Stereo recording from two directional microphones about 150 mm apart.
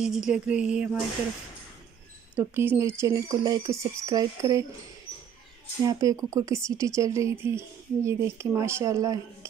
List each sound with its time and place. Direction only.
0.0 s speech: 5° right (ahead or behind)
2.3 s speech: 15° right (ahead or behind)
5.9 s speech: 25° right (ahead or behind)